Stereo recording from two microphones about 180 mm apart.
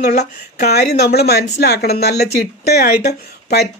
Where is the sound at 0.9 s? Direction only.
65° left (ahead or behind).